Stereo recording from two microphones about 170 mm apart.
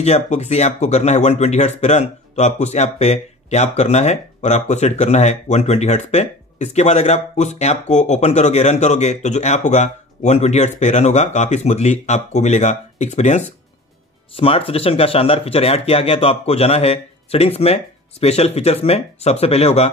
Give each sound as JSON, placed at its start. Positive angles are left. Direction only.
{"t": 0.0, "sound": "speech", "side_deg": 40}